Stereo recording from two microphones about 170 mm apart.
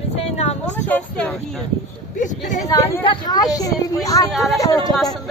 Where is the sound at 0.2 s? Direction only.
40° left (ahead or behind).